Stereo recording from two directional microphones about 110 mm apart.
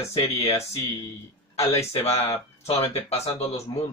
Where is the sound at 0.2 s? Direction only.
60° left (ahead or behind).